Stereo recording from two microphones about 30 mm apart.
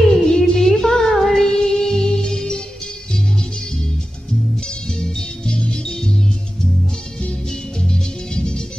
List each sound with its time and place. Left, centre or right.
0.2 s music: centre
4.6 s music: centre
7.9 s music: left